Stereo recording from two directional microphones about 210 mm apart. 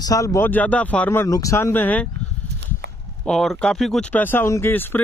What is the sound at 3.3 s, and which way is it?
Speech, 5° left (ahead or behind).